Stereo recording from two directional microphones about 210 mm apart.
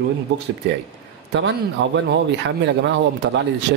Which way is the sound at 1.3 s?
60° right (ahead or behind).